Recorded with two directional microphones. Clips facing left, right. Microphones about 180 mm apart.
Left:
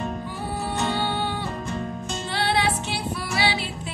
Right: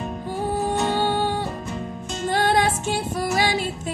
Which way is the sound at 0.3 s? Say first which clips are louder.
Right 6 dB; 45° right (ahead or behind).